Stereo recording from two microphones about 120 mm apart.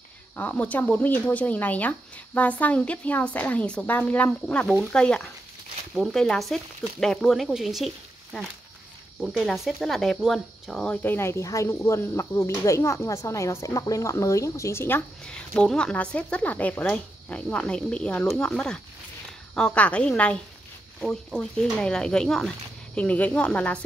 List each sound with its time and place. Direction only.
0.4 s speech: 15° left (ahead or behind)
15.2 s speech: 5° left (ahead or behind)